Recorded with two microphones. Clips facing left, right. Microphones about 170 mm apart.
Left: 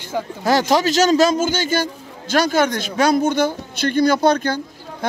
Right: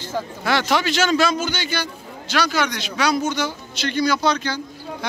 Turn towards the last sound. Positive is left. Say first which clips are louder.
# left 2 dB
turn(degrees=55)  # may be behind; listen again after turning